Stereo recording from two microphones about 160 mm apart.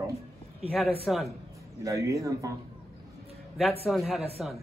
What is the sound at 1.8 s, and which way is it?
Speech, 20° right (ahead or behind).